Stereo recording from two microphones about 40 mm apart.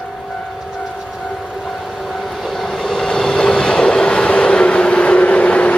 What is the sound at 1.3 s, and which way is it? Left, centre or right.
Vehicle, centre.